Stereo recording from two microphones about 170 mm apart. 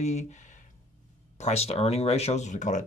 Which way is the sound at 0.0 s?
40° left (ahead or behind).